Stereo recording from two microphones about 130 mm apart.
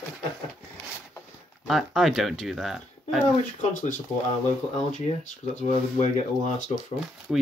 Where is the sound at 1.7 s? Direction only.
Centre (ahead or behind).